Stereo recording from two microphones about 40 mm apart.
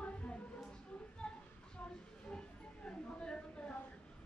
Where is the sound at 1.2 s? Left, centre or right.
Centre.